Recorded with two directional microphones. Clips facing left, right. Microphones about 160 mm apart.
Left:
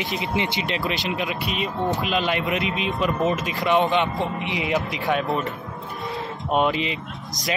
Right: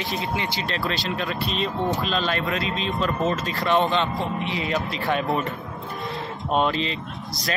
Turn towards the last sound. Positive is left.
turn(degrees=10)  # may be behind; listen again after turning